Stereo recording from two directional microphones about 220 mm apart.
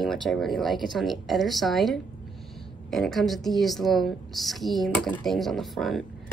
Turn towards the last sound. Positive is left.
turn(degrees=0)  # may be behind; listen again after turning